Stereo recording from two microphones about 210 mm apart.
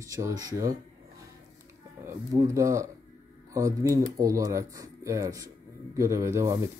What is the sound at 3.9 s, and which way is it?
Speech, 15° right (ahead or behind).